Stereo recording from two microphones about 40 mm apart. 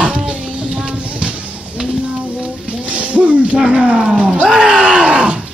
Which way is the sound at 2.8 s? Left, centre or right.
Right.